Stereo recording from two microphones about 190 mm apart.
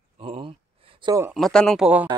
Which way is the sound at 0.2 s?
30° right (ahead or behind).